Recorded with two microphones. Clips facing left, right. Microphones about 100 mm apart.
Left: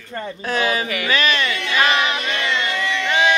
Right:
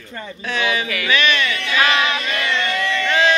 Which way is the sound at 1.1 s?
35° left (ahead or behind).